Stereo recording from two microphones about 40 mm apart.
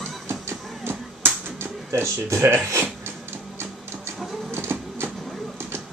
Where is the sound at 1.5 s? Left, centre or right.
Right.